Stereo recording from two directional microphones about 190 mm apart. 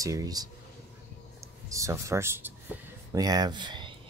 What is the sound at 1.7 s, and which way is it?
Speech, 15° right (ahead or behind).